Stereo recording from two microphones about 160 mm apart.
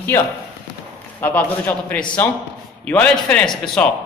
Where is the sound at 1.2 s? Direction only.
10° left (ahead or behind).